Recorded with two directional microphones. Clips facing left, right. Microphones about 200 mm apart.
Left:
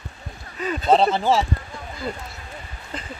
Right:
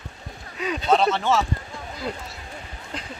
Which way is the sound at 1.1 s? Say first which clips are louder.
Left 2 dB; 30° left (ahead or behind).